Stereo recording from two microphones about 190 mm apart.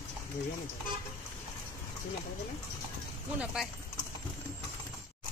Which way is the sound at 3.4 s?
5° right (ahead or behind).